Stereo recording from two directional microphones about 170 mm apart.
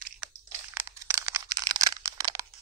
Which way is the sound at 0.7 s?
15° right (ahead or behind).